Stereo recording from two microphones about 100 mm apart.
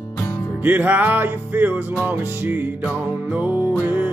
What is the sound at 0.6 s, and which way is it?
Music, 15° right (ahead or behind).